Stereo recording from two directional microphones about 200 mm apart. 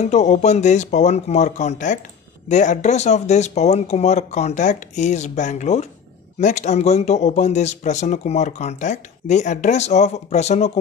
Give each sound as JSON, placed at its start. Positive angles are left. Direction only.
{"t": 0.0, "sound": "speech", "side_deg": 35}